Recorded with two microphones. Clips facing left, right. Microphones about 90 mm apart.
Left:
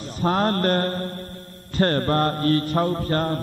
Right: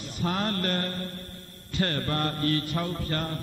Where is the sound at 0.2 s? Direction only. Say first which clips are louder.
Left 8 dB; 40° left (ahead or behind).